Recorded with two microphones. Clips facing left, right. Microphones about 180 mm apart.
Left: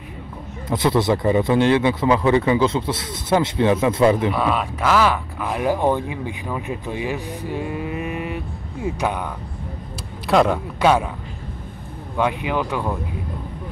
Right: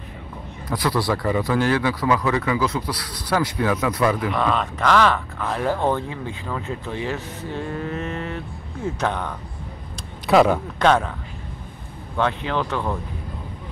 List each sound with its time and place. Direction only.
0.7 s a man's voice: 25° left (ahead or behind)
4.3 s speech: 5° left (ahead or behind)
10.2 s a man's voice: centre (ahead or behind)
12.2 s speech: 10° left (ahead or behind)